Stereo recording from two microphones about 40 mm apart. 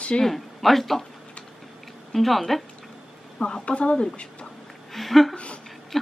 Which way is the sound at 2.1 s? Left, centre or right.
Centre.